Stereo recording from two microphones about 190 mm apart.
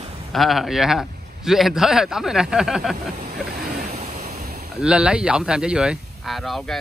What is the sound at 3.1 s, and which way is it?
Vehicle, 50° right (ahead or behind).